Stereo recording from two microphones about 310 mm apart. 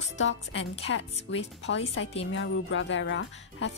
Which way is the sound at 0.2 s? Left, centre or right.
Left.